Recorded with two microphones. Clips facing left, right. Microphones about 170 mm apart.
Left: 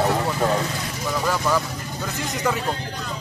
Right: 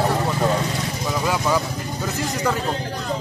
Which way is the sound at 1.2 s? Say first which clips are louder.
Right 1 dB; 10° right (ahead or behind).